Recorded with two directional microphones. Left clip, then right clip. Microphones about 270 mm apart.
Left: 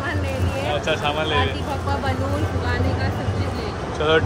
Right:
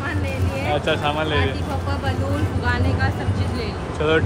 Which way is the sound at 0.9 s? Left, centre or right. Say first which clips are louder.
Even; centre.